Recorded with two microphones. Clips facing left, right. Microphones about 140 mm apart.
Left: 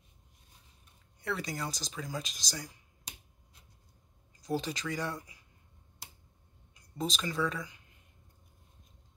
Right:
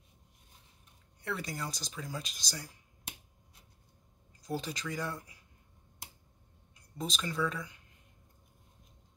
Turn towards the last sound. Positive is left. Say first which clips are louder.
# left 1 dB
turn(degrees=0)  # may be behind; listen again after turning